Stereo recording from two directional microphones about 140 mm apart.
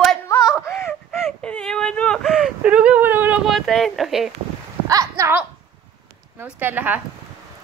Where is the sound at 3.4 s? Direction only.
Centre (ahead or behind).